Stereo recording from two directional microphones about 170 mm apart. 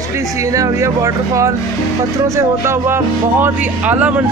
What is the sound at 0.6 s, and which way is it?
Speech, 20° right (ahead or behind).